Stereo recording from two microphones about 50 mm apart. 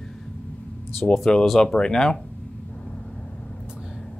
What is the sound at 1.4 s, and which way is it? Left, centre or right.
Speech, centre.